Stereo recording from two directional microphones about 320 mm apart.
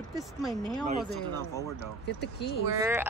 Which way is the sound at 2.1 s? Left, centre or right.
Left.